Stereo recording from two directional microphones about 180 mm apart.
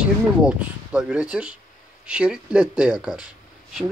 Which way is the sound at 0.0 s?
5° right (ahead or behind).